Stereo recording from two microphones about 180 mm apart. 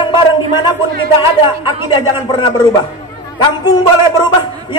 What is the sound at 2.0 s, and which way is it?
A man's voice, 25° left (ahead or behind).